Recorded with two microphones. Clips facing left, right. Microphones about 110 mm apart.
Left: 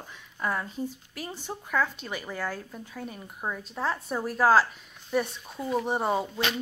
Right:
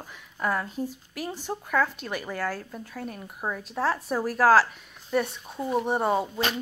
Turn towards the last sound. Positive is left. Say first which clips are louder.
# right 2 dB
turn(degrees=0)  # may be behind; listen again after turning